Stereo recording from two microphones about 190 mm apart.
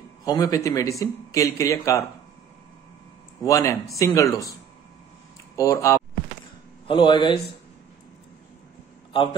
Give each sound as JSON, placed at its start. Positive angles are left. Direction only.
{"t": 0.2, "sound": "speech", "side_deg": 20}
{"t": 3.4, "sound": "speech", "side_deg": 15}
{"t": 5.6, "sound": "speech", "side_deg": 15}